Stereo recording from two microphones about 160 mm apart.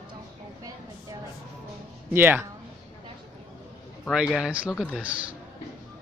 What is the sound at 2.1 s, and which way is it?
Speech, 15° right (ahead or behind).